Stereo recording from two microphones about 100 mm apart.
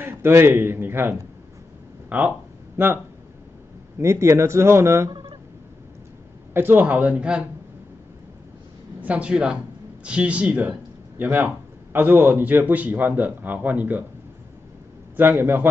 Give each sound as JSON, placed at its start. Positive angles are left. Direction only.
{"t": 0.0, "sound": "a man's voice", "side_deg": -25}
{"t": 4.0, "sound": "a man's voice", "side_deg": -25}
{"t": 6.5, "sound": "a man's voice", "side_deg": -20}
{"t": 9.0, "sound": "a man's voice", "side_deg": -15}
{"t": 15.1, "sound": "a man's voice", "side_deg": -20}